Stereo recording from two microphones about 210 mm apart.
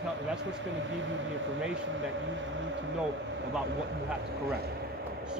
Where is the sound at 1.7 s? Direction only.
60° right (ahead or behind).